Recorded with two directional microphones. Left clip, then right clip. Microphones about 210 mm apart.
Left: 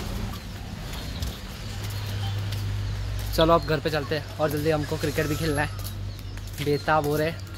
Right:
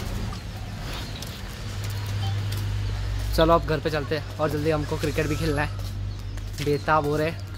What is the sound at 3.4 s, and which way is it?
Speech, centre (ahead or behind).